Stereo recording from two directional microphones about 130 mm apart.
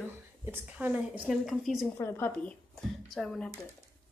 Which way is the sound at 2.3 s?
5° left (ahead or behind).